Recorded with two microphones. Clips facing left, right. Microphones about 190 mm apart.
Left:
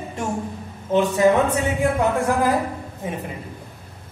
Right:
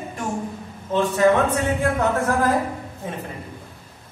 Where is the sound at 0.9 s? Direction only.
15° left (ahead or behind).